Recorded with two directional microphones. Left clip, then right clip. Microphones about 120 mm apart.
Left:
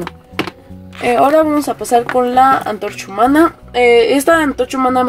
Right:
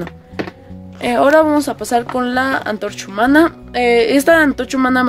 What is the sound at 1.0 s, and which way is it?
Speech, 15° right (ahead or behind).